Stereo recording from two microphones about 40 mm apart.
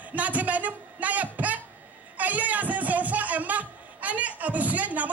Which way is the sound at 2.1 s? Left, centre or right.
Right.